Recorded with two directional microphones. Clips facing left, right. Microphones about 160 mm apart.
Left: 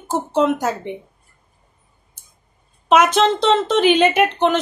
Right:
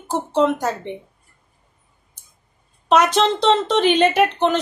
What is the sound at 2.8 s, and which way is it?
Speech, 5° left (ahead or behind).